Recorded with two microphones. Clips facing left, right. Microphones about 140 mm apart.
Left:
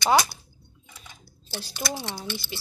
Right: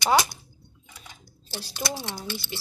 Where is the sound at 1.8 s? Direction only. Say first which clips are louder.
Even; centre (ahead or behind).